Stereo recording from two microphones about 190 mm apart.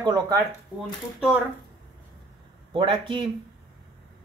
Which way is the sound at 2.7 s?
25° right (ahead or behind).